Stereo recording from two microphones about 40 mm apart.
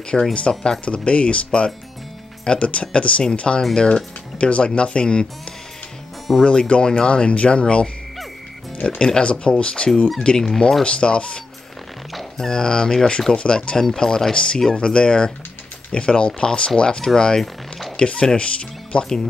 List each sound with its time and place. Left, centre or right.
0.1 s speech: left
6.3 s speech: centre
6.7 s speech: left
12.4 s speech: centre
17.4 s a sound: centre
17.9 s speech: left